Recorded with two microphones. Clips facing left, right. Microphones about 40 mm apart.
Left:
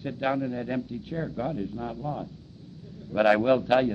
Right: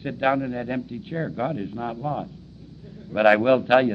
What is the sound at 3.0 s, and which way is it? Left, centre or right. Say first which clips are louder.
Speech: right 4 dB; right.